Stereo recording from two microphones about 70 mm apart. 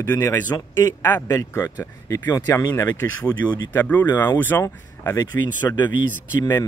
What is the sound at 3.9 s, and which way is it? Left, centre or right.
A man's voice, left.